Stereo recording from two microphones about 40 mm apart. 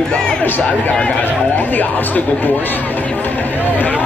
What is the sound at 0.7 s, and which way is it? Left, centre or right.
Speech, left.